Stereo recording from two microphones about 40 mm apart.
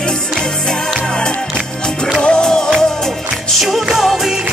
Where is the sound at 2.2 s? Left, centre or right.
Centre.